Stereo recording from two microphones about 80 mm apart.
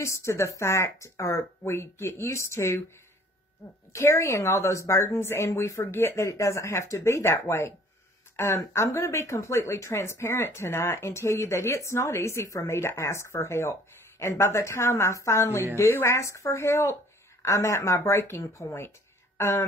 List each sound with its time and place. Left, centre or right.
0.0 s speech: left
3.9 s speech: left